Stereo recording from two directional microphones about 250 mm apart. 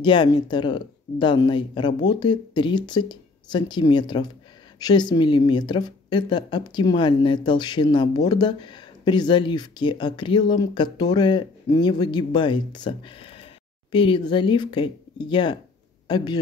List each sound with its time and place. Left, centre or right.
0.0 s a woman's voice: centre